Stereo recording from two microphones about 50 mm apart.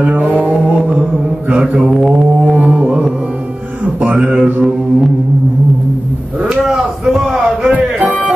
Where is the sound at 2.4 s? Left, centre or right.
Right.